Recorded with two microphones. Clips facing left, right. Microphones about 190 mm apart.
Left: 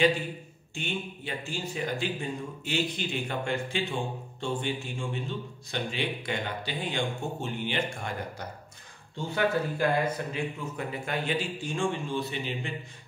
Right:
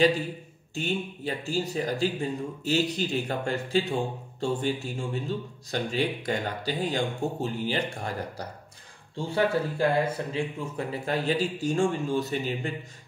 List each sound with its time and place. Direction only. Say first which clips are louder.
0.7 s speech: right 5 dB; 40° right (ahead or behind)